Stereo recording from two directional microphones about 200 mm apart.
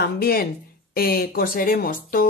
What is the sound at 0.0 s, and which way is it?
Speech, 50° left (ahead or behind).